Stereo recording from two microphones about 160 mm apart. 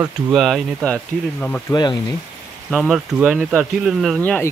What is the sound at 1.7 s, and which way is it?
Speech, 25° left (ahead or behind).